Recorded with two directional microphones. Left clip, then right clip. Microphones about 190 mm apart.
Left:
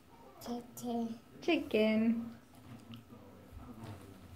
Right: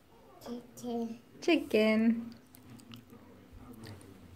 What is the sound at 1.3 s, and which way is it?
Speech, 40° right (ahead or behind).